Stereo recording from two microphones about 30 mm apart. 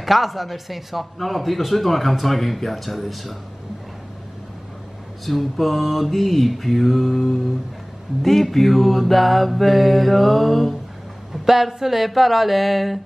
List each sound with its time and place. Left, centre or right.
0.0 s a man's voice: centre
5.2 s a man's voice: centre
11.4 s a man's voice: centre